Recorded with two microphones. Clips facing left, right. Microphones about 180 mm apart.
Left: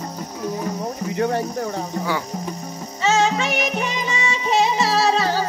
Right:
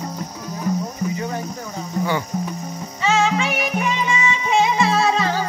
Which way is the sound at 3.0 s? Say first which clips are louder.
Even; 40° left (ahead or behind).